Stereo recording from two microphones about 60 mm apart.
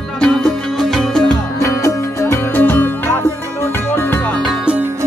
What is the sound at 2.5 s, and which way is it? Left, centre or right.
Music, left.